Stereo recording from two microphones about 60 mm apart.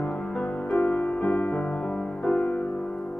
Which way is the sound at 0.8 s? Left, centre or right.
Left.